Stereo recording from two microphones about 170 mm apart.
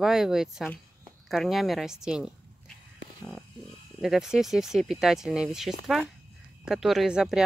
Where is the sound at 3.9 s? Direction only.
5° right (ahead or behind).